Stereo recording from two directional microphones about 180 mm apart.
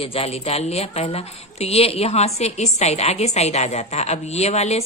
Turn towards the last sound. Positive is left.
turn(degrees=35)  # may be behind; listen again after turning